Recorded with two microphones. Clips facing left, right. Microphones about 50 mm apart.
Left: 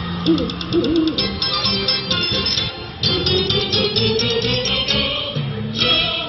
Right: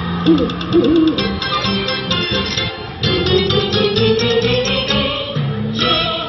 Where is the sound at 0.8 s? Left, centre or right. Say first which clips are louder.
Right 5 dB; right.